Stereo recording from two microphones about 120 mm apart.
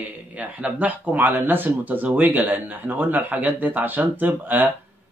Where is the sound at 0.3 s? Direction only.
10° right (ahead or behind).